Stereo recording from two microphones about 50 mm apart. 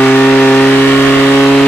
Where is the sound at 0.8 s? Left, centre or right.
Left.